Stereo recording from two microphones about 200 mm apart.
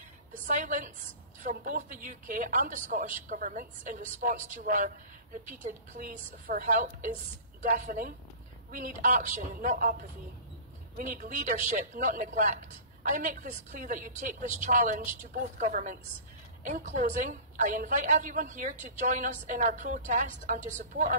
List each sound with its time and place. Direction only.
0.3 s a woman's voice: 40° right (ahead or behind)